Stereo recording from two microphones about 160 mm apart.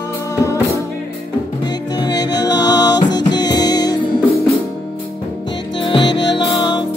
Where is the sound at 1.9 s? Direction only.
25° left (ahead or behind).